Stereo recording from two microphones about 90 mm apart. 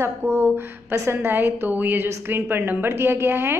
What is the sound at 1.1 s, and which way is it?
A woman's voice, 25° right (ahead or behind).